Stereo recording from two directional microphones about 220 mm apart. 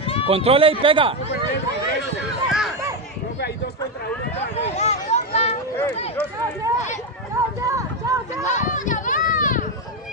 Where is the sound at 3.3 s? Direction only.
50° left (ahead or behind).